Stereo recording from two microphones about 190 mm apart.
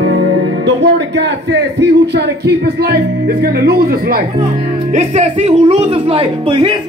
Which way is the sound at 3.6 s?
55° right (ahead or behind).